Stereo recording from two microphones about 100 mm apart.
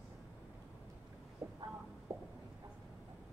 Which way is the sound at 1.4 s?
30° right (ahead or behind).